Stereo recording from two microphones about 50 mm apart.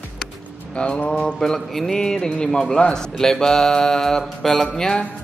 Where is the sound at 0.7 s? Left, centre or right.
Left.